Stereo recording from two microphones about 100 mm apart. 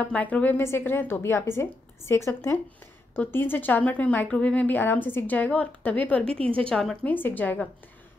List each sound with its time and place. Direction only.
0.0 s a woman's voice: 15° left (ahead or behind)
7.1 s a woman's voice: 20° left (ahead or behind)